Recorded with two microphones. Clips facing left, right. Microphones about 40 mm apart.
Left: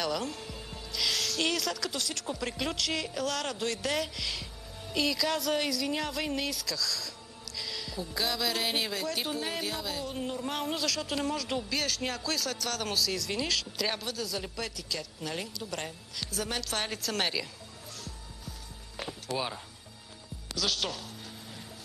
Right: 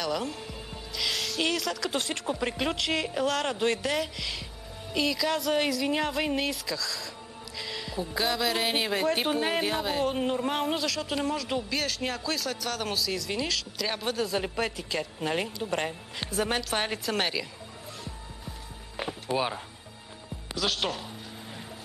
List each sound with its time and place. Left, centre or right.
0.1 s music: centre
1.9 s speech: right
2.2 s a woman's voice: right
8.9 s speech: right
10.5 s speech: centre
14.0 s speech: right
16.6 s a woman's voice: right
18.9 s music: right
20.5 s speech: centre